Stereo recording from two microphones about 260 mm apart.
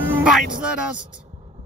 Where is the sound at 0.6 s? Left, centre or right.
Centre.